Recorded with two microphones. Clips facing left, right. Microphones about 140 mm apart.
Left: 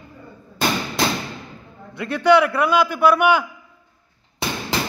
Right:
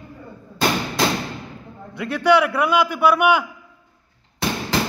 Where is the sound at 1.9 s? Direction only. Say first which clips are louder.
Left 1 dB; 10° right (ahead or behind).